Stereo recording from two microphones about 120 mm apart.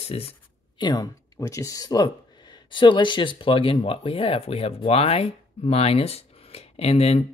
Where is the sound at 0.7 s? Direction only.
35° left (ahead or behind).